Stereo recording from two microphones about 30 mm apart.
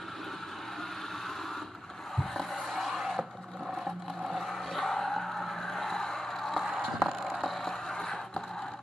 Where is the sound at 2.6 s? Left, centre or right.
Centre.